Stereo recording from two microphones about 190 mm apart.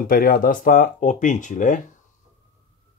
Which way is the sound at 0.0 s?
50° left (ahead or behind).